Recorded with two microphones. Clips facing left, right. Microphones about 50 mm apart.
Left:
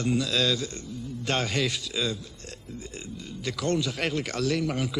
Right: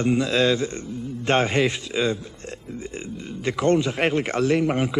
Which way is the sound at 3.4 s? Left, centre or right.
Right.